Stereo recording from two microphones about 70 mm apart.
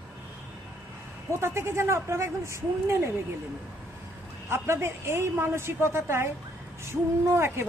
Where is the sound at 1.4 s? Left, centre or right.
Right.